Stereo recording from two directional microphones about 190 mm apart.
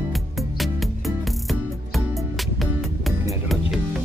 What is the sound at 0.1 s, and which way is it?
Music, centre (ahead or behind).